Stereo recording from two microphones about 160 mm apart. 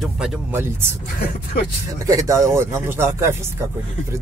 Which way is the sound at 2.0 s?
20° right (ahead or behind).